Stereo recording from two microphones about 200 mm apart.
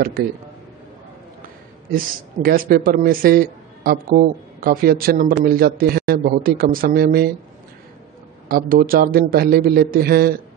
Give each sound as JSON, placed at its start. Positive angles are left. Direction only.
{"t": 1.9, "sound": "speech", "side_deg": -45}
{"t": 8.5, "sound": "speech", "side_deg": -45}